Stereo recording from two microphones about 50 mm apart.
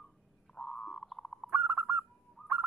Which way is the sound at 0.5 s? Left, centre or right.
Centre.